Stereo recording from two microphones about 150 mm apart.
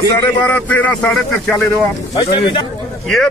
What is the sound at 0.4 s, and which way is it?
Speech, 10° left (ahead or behind).